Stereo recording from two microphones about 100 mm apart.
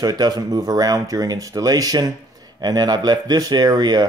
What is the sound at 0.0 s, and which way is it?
Speech, 40° right (ahead or behind).